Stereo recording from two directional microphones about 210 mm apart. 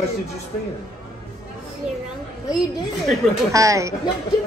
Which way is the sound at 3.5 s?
15° right (ahead or behind).